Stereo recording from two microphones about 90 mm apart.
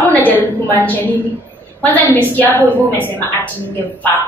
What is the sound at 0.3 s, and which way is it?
A woman's voice, 20° left (ahead or behind).